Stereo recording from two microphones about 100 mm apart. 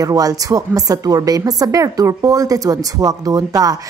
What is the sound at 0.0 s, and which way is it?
A woman's voice, 35° right (ahead or behind).